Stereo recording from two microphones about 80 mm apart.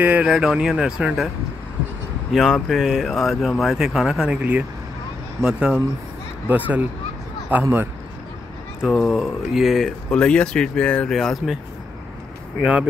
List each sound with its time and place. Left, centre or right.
0.0 s speech: centre
2.3 s speech: centre
6.5 s speech: centre
8.8 s speech: centre
11.1 s speech: centre